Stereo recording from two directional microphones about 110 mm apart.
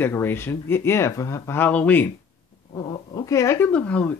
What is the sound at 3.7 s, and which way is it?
Speech, 15° left (ahead or behind).